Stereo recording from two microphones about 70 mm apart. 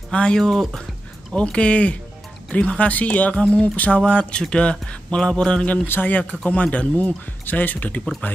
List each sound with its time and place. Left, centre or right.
0.1 s speech: centre
1.3 s speech: centre
5.9 s speech: left